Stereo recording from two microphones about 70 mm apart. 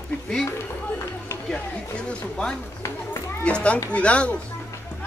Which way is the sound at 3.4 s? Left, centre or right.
Centre.